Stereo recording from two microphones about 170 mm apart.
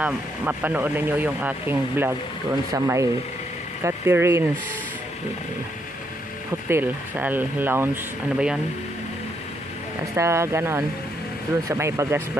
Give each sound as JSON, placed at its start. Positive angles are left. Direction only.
{"t": 0.0, "sound": "speech", "side_deg": -10}
{"t": 6.7, "sound": "speech", "side_deg": -10}
{"t": 10.1, "sound": "speech", "side_deg": -15}